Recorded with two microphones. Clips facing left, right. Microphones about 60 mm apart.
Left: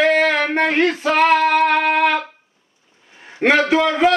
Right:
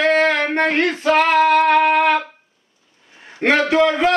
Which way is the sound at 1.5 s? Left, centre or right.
Centre.